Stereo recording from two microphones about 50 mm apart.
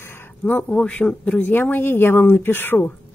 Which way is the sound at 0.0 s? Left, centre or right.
Left.